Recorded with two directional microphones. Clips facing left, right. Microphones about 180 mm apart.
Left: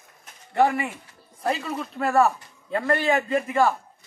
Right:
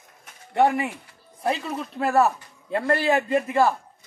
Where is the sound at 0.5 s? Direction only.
Centre (ahead or behind).